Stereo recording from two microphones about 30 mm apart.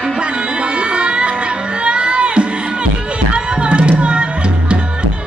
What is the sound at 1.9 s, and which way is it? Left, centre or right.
Crowd, right.